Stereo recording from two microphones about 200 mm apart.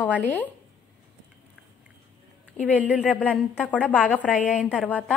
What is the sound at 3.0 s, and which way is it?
A woman's voice, centre (ahead or behind).